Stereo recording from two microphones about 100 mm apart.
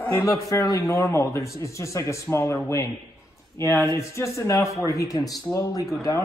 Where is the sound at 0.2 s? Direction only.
35° left (ahead or behind).